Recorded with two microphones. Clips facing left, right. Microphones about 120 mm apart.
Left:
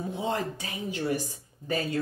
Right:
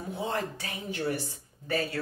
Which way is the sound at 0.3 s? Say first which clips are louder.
Left 2 dB; 15° left (ahead or behind).